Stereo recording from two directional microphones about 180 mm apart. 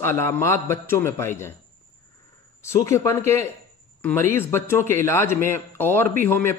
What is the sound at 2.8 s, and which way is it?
A man's voice, 15° left (ahead or behind).